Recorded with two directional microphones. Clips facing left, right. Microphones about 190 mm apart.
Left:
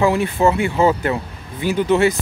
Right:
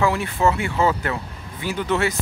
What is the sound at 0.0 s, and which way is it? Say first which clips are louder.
Speech: left 4 dB; 20° left (ahead or behind).